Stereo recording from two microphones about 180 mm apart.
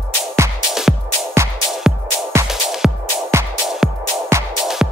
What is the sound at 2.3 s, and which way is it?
Music, 15° right (ahead or behind).